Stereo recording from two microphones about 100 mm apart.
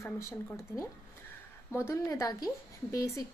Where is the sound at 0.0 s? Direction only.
30° left (ahead or behind).